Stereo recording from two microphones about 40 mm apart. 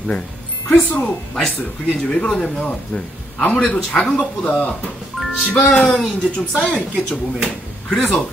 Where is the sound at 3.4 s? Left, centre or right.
Left.